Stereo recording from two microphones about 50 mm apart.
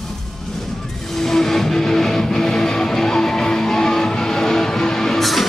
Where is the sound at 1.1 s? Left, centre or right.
Centre.